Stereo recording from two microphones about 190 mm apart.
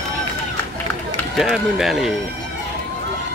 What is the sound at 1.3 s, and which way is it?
Speech, centre (ahead or behind).